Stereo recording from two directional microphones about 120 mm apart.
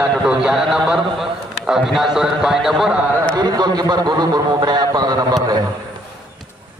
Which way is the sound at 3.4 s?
35° right (ahead or behind).